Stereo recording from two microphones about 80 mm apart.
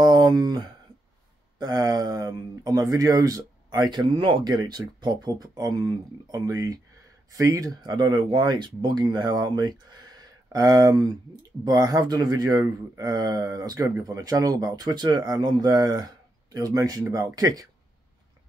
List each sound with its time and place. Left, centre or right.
0.0 s a sound: right
1.6 s speech: right
4.5 s speech: right
5.5 s speech: right
7.8 s speech: right
9.0 s speech: right